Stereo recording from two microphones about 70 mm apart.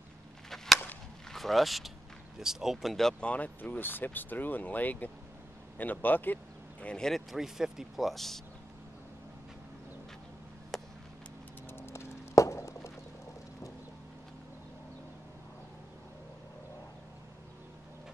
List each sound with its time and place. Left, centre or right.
1.3 s speech: centre; by 6.9 s left
6.9 s speech: centre
10.7 s a sound: centre
11.8 s clip-clop: left